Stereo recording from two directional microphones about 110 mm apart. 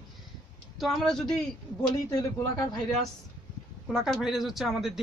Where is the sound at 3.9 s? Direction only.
5° right (ahead or behind).